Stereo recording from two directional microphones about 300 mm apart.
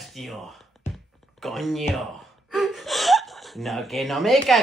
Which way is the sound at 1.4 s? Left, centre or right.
Centre.